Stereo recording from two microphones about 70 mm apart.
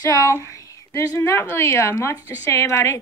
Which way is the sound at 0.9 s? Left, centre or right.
Left.